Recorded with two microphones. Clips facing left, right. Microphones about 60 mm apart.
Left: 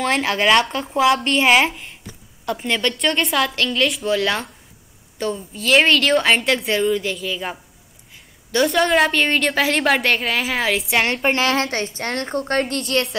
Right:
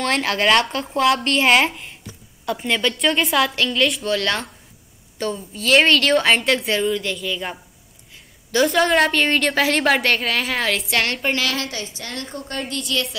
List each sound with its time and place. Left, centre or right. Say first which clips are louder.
0.0 s a woman's voice: left 1 dB; centre; by 13.1 s left